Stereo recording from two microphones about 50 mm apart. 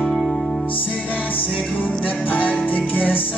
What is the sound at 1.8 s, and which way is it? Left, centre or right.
Music, left.